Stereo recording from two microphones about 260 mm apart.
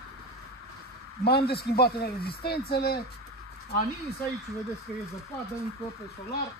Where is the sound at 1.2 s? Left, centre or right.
Left.